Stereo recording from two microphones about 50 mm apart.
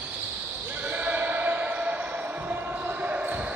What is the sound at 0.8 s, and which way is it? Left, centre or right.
Basketball bounce, right.